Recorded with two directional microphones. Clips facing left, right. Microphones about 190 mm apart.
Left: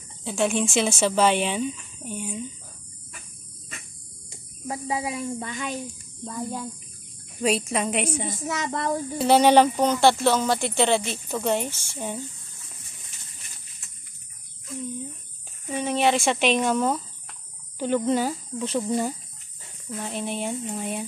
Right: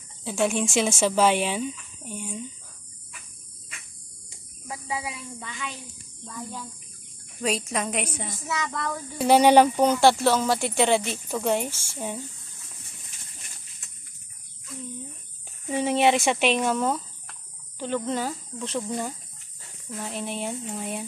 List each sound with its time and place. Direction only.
0.2 s speech: 10° right (ahead or behind)
4.6 s speech: 45° left (ahead or behind)
7.4 s speech: 10° left (ahead or behind)
8.6 s speech: 35° left (ahead or behind)
9.2 s speech: 10° right (ahead or behind)
15.7 s speech: 25° right (ahead or behind)
16.3 s speech: 5° right (ahead or behind)
20.0 s speech: centre (ahead or behind)